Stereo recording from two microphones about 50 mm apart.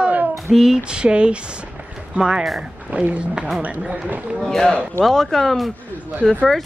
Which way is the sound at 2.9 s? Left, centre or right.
Right.